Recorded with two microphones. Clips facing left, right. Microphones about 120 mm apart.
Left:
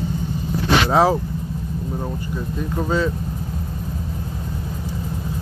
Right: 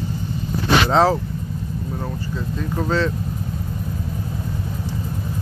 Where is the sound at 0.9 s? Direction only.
10° left (ahead or behind).